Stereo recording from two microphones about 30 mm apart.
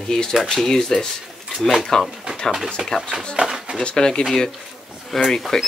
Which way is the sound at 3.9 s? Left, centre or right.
Left.